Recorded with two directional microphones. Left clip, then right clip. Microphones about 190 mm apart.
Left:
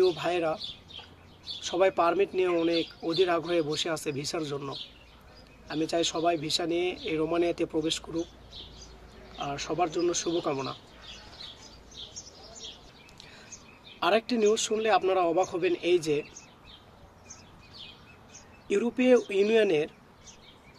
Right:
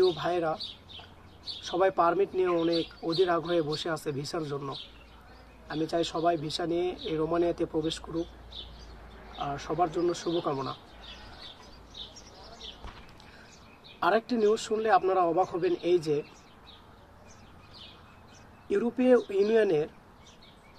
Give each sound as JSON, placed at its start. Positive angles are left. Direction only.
{"t": 0.0, "sound": "speech", "side_deg": 30}
{"t": 1.6, "sound": "speech", "side_deg": 30}
{"t": 9.4, "sound": "speech", "side_deg": 25}
{"t": 13.9, "sound": "speech", "side_deg": 30}
{"t": 18.7, "sound": "speech", "side_deg": 30}